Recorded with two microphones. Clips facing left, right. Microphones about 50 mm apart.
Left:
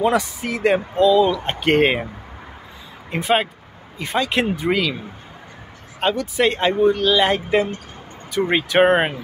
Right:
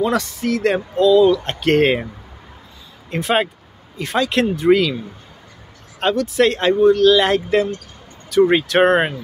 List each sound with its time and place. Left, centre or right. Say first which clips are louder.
0.1 s speech: right 1 dB; centre
3.1 s speech: right 1 dB; centre
5.9 s speech: right 3 dB; centre
7.4 s speech: right 2 dB; left
8.3 s speech: right 6 dB; centre